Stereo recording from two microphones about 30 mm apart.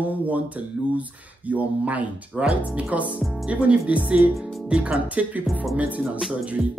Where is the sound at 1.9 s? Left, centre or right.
Right.